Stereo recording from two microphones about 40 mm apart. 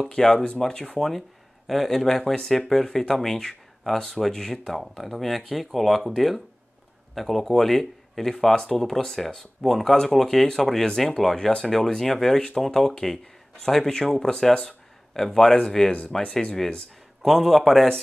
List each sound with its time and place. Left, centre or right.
0.0 s speech: centre
14.6 s a sound: centre
15.5 s speech: centre
16.2 s speech: left
17.2 s speech: centre